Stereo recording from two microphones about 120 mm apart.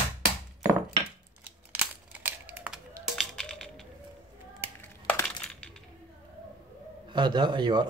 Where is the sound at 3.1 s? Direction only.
5° left (ahead or behind).